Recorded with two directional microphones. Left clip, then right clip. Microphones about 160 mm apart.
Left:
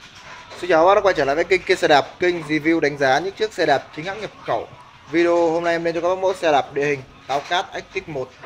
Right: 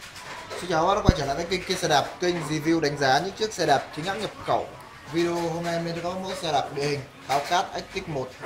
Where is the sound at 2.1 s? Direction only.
25° left (ahead or behind).